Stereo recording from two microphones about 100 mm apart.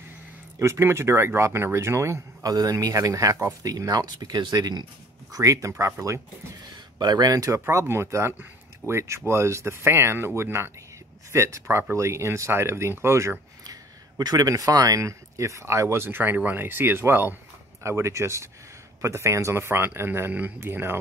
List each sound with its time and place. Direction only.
0.6 s speech: 25° right (ahead or behind)
7.0 s speech: 45° right (ahead or behind); by 21.0 s 25° right (ahead or behind)